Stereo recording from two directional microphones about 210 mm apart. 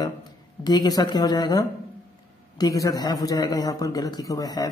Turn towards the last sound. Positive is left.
turn(degrees=15)  # may be behind; listen again after turning